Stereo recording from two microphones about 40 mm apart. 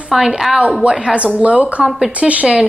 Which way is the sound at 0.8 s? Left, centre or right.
Right.